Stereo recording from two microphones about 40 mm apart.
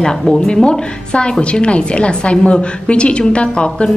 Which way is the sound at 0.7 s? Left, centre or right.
Left.